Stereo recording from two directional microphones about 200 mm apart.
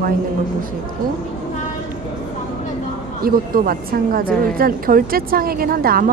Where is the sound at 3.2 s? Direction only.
45° right (ahead or behind).